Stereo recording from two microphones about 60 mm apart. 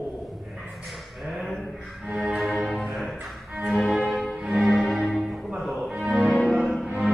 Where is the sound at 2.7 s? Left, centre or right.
Centre.